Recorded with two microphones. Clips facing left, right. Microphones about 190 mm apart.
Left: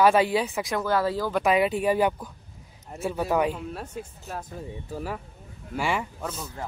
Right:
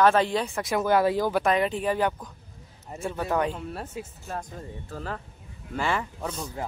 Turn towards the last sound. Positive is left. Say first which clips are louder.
# right 1 dB
turn(degrees=5)  # may be behind; listen again after turning